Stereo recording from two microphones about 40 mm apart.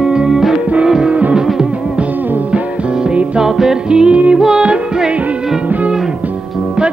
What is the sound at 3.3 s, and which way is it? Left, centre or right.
Music, centre.